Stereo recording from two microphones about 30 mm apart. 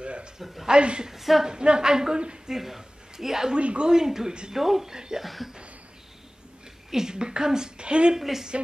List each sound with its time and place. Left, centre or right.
0.0 s a sound: right
0.7 s a woman's voice: right
1.0 s speech: centre
1.4 s a woman's voice: right
2.4 s speech: centre
3.5 s a woman's voice: right
3.9 s speech: centre
4.6 s speech: centre
4.8 s a woman's voice: centre
5.2 s speech: centre
6.9 s a woman's voice: centre; by 8.1 s right
8.2 s speech: centre